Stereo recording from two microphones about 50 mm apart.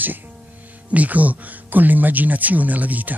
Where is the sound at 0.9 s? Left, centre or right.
Right.